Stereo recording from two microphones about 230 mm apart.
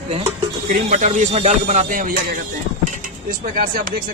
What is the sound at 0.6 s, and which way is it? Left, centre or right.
Speech, right.